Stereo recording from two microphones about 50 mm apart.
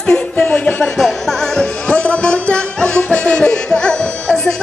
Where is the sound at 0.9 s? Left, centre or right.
Centre.